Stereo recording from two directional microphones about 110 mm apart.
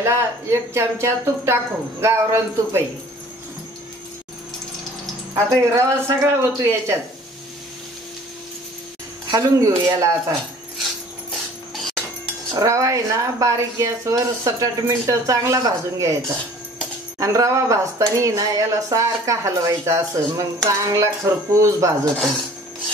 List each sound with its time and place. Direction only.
0.0 s speech: 25° right (ahead or behind)
5.3 s speech: 25° right (ahead or behind)
9.3 s speech: 30° right (ahead or behind)
12.5 s speech: 30° right (ahead or behind)
17.2 s speech: 30° right (ahead or behind)
22.1 s speech: 5° left (ahead or behind)